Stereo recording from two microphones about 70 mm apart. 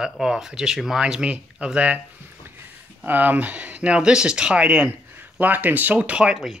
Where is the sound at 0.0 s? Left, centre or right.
Centre.